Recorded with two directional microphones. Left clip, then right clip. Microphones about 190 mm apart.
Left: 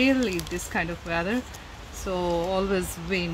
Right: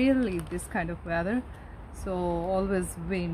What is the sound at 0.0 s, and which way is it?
Speech, 5° right (ahead or behind).